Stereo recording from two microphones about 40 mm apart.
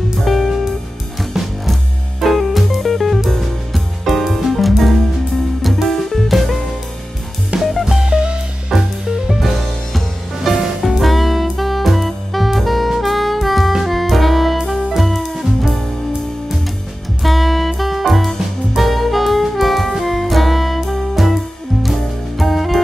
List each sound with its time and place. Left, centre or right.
0.2 s music: centre
7.8 s music: centre
8.7 s music: centre
17.2 s music: centre
18.8 s saxophone: centre
22.4 s music: centre